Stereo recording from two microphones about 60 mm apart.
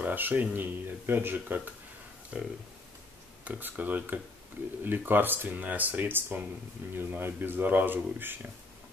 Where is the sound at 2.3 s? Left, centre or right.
Centre.